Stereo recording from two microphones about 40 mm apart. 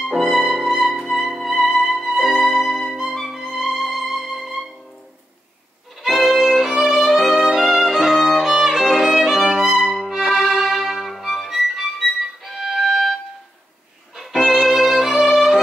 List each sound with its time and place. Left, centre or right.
0.0 s music: centre
6.0 s violin: centre
14.3 s violin: centre